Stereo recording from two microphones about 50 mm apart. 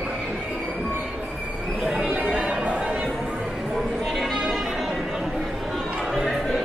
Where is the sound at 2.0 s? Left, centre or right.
Right.